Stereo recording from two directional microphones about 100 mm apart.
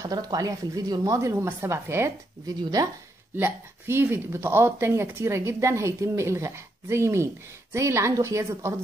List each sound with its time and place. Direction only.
0.0 s speech: 40° right (ahead or behind)
3.3 s speech: 20° right (ahead or behind)